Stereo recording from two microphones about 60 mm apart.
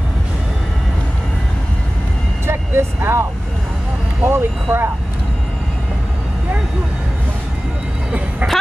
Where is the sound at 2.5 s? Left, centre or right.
Right.